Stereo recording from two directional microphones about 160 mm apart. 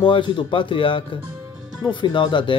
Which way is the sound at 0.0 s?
30° left (ahead or behind).